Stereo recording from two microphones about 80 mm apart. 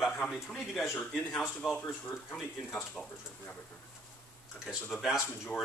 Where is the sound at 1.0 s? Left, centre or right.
Centre.